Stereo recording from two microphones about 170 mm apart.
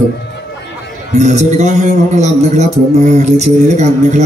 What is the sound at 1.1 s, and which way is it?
A man's voice, 45° right (ahead or behind).